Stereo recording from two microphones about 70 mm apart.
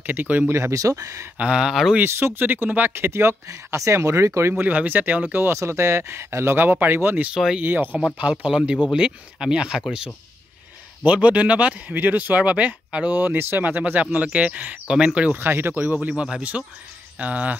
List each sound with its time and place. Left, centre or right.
0.0 s speech: right
0.5 s speech: right
0.7 s speech: right
1.4 s speech: centre
2.0 s speech: right
4.6 s speech: right
7.3 s speech: centre
7.6 s speech: right
8.2 s speech: centre
13.2 s speech: right; by 15.3 s centre
15.3 s speech: right
16.5 s speech: centre